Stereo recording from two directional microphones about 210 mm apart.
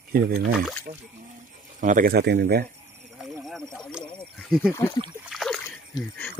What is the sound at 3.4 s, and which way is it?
Snake, centre (ahead or behind).